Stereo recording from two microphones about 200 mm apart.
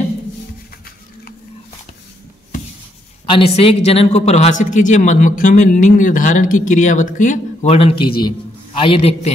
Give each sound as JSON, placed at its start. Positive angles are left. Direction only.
{"t": 3.3, "sound": "a man's voice", "side_deg": 25}